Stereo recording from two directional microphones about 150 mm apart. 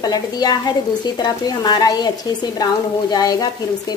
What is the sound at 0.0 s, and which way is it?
Speech, 25° left (ahead or behind).